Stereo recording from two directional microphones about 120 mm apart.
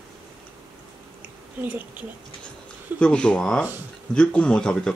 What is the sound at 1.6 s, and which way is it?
Speech, 15° right (ahead or behind).